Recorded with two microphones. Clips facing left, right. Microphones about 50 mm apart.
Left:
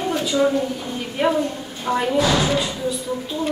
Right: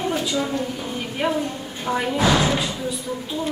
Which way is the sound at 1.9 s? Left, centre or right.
Centre.